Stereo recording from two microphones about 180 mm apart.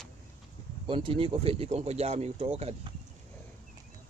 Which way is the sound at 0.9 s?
30° right (ahead or behind).